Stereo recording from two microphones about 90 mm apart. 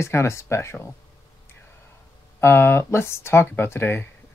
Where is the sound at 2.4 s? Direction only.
25° left (ahead or behind).